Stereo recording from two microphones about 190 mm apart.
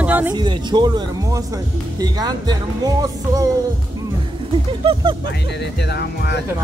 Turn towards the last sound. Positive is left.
turn(degrees=60)  # may be behind; listen again after turning